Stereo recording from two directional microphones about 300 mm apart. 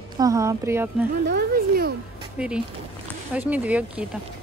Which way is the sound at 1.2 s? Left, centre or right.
Right.